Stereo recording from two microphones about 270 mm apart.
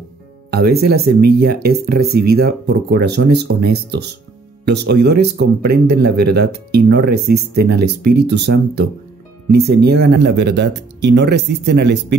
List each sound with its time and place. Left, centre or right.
0.5 s speech: right